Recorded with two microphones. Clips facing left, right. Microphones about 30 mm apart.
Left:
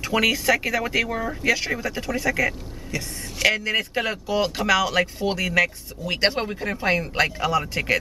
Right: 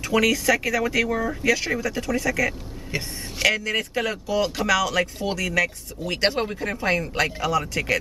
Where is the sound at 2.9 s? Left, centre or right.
Right.